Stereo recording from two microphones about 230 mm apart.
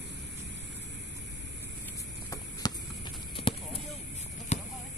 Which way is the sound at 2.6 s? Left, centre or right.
Centre.